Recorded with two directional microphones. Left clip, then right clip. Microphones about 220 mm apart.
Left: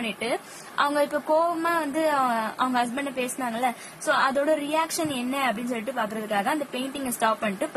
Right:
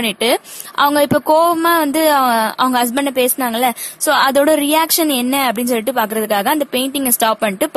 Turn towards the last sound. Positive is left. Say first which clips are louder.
# right 9 dB
turn(degrees=-45)  # may be behind; listen again after turning